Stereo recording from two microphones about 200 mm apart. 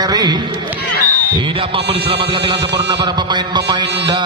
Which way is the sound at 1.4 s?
25° right (ahead or behind).